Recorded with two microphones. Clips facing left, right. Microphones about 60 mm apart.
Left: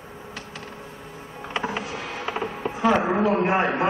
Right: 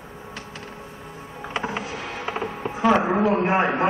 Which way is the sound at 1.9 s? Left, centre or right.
Right.